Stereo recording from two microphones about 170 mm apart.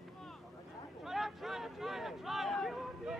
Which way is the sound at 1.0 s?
Centre (ahead or behind).